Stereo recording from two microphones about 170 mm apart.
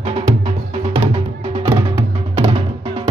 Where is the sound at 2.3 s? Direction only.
35° right (ahead or behind).